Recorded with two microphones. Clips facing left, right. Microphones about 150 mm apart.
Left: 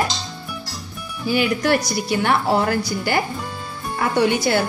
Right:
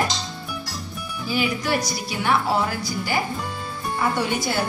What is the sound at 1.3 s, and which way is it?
Speech, 65° left (ahead or behind).